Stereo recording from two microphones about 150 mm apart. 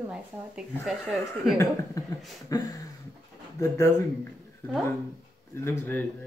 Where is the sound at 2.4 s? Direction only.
20° left (ahead or behind).